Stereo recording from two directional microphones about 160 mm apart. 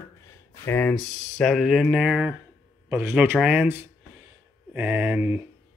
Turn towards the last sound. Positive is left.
turn(degrees=-10)  # may be behind; listen again after turning